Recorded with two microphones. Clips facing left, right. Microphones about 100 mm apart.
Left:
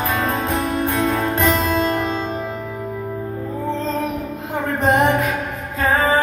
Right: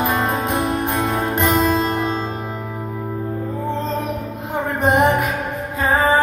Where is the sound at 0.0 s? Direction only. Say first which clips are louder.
Right 1 dB; 20° right (ahead or behind).